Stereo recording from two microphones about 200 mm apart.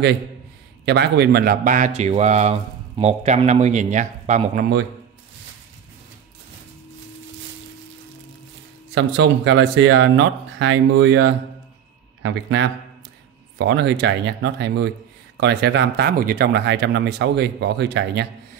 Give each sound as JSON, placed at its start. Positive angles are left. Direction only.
{"t": 0.8, "sound": "speech", "side_deg": -55}
{"t": 8.9, "sound": "speech", "side_deg": -65}